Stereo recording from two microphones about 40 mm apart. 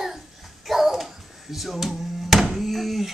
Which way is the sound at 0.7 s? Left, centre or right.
Centre.